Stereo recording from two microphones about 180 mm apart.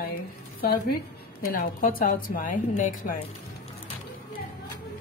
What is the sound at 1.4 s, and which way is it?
A woman's voice, 50° left (ahead or behind).